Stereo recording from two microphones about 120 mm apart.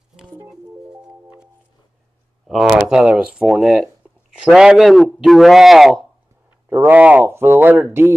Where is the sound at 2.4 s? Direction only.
5° right (ahead or behind).